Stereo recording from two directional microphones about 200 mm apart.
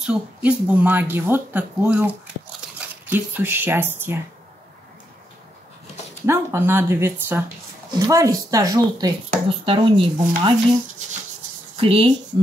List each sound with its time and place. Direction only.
0.0 s speech: 5° right (ahead or behind)
6.2 s speech: 10° right (ahead or behind)
11.7 s speech: 30° right (ahead or behind)